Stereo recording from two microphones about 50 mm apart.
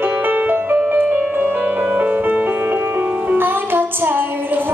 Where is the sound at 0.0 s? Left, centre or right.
Right.